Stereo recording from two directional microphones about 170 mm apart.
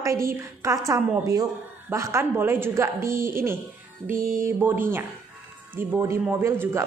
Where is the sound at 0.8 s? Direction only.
20° right (ahead or behind).